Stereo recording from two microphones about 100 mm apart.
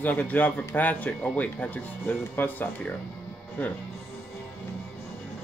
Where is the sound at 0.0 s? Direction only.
15° left (ahead or behind).